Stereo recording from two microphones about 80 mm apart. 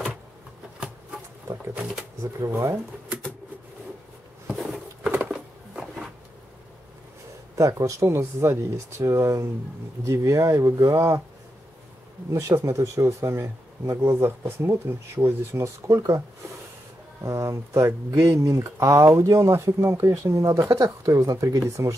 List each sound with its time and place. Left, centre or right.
1.8 s speech: centre
2.5 s speech: right
4.5 s a sound: centre
7.5 s speech: right
12.3 s speech: right
15.9 s speech: right
17.2 s speech: right